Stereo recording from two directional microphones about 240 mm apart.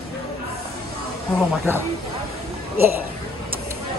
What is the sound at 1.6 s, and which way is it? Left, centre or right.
A woman's voice, centre.